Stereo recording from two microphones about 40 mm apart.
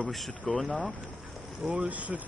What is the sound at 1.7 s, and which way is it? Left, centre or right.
Speech, right.